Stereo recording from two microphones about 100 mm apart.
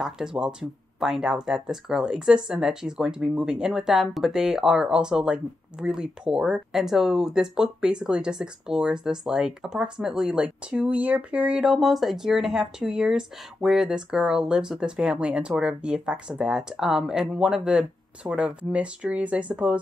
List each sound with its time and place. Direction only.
0.0 s speech: 5° right (ahead or behind)